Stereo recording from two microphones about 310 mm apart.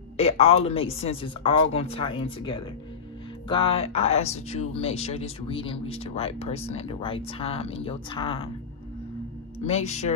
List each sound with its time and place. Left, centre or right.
0.2 s a woman's voice: centre
9.7 s speech: left